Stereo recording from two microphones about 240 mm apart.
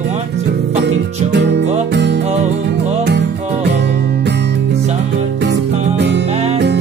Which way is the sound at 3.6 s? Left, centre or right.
Right.